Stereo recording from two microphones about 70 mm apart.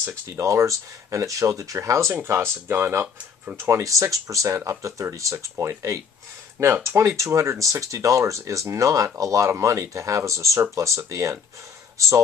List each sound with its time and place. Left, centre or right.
0.0 s speech: right
3.6 s speech: right
6.6 s speech: right